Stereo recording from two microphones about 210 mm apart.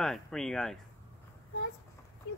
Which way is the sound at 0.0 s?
Centre (ahead or behind).